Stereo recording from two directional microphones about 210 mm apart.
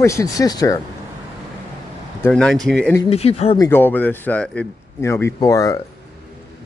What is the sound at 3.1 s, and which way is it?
Speech, 30° left (ahead or behind).